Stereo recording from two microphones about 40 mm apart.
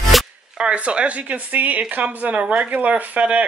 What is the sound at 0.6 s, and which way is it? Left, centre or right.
Speech, right.